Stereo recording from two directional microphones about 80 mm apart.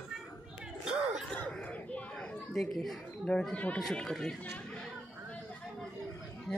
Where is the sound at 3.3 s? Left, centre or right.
Centre.